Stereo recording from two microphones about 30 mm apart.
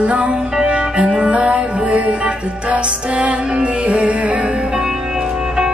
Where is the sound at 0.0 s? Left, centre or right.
Right.